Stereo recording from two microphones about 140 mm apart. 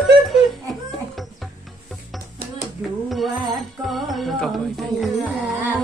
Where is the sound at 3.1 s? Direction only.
Centre (ahead or behind).